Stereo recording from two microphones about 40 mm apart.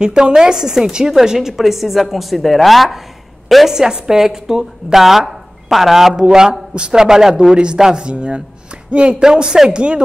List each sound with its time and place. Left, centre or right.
0.0 s a woman's voice: centre
3.7 s a woman's voice: centre